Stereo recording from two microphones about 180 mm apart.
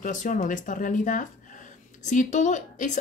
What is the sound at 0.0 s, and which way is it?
Speech, 45° left (ahead or behind).